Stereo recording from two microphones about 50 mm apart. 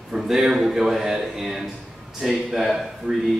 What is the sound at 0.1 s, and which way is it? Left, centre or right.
Speech, centre.